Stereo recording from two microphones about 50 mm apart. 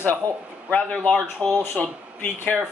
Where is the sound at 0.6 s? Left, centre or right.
Left.